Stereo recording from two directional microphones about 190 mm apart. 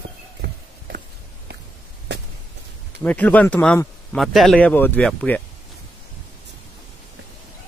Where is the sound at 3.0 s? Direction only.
10° left (ahead or behind).